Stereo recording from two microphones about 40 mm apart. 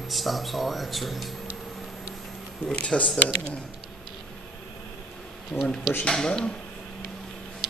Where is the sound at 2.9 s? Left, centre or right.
Left.